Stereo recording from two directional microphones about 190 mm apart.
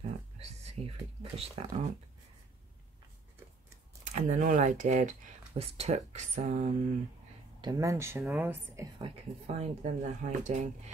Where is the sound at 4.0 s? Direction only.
35° right (ahead or behind).